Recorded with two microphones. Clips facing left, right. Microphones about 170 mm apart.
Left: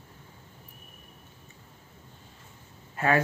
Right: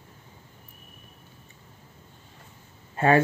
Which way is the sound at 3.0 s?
30° right (ahead or behind).